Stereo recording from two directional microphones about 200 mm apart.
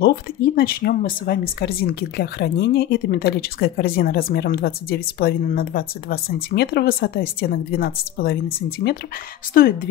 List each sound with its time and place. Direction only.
0.0 s speech: 50° left (ahead or behind)